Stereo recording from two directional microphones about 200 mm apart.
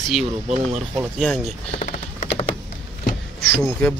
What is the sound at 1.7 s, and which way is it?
Typing, 40° left (ahead or behind).